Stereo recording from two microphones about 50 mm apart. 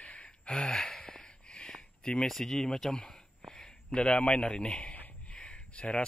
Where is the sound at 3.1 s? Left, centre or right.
Centre.